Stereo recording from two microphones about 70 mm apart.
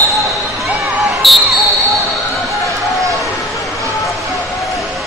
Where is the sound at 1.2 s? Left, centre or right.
Centre.